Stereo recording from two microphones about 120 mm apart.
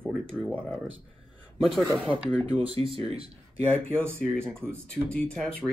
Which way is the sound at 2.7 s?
50° right (ahead or behind).